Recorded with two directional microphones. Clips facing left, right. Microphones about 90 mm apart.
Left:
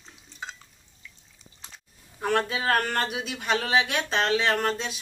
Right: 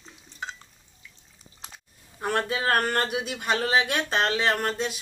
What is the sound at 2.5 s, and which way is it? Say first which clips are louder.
Speech: right 1 dB; 45° right (ahead or behind).